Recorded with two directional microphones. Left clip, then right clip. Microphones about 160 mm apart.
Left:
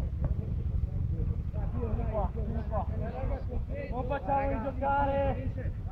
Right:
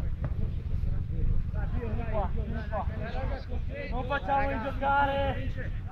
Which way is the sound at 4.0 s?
10° right (ahead or behind).